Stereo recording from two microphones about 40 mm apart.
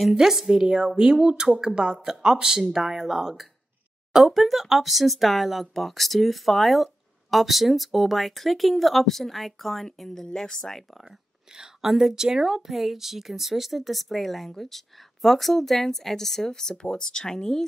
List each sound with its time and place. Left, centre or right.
0.1 s speech: centre
11.0 s whispering: centre
12.1 s speech: centre